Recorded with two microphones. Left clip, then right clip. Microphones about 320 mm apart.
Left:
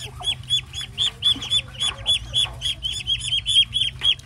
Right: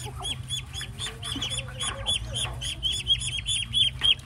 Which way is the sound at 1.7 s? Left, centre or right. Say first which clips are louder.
Left 7 dB; centre.